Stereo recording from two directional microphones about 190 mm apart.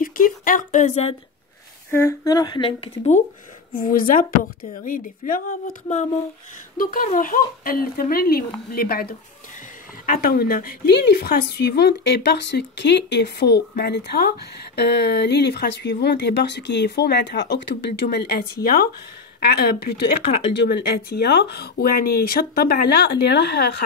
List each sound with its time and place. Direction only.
0.0 s speech: 45° left (ahead or behind)
1.9 s speech: 15° left (ahead or behind); by 3.3 s 40° left (ahead or behind)
3.7 s speech: 50° left (ahead or behind)